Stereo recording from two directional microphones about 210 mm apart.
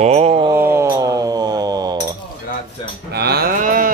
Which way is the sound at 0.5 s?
10° right (ahead or behind).